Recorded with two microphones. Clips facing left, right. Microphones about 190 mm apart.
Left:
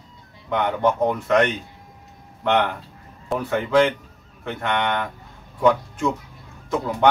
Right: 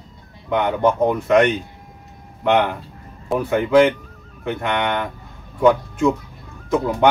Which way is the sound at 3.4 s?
15° right (ahead or behind).